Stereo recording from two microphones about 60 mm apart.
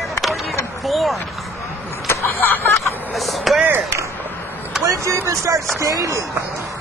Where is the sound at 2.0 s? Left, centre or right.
Left.